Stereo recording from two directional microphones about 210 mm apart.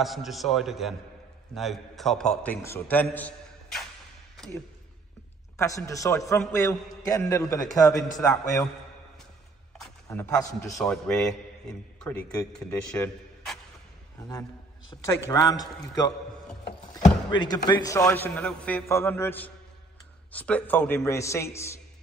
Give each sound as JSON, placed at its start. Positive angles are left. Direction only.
{"t": 0.0, "sound": "a man's voice", "side_deg": 0}
{"t": 5.6, "sound": "a man's voice", "side_deg": 15}
{"t": 10.0, "sound": "a man's voice", "side_deg": 15}
{"t": 15.2, "sound": "a man's voice", "side_deg": 20}
{"t": 17.3, "sound": "a man's voice", "side_deg": 20}